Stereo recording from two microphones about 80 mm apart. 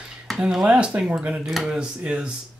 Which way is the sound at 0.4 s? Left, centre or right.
Centre.